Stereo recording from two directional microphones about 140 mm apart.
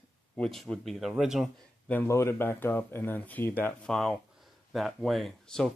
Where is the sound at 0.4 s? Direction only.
5° left (ahead or behind).